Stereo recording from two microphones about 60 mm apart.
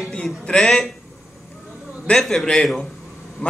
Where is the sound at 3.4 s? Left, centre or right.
Left.